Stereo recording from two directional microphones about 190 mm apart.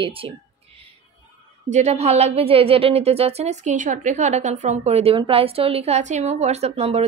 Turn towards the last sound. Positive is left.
turn(degrees=-35)  # may be behind; listen again after turning